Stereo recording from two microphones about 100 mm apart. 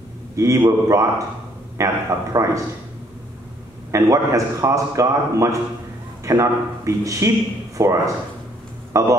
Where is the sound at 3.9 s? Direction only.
35° right (ahead or behind).